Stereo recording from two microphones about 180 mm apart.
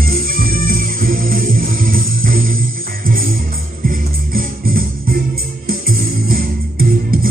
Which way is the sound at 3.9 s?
55° right (ahead or behind).